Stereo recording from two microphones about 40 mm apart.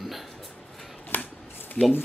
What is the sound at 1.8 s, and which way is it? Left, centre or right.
Speech, centre.